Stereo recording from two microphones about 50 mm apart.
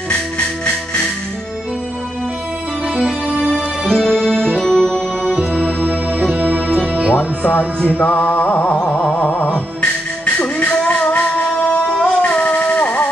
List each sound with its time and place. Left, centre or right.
3.3 s music: right
3.5 s music: centre
5.8 s music: right
7.2 s speech: left
8.0 s music: left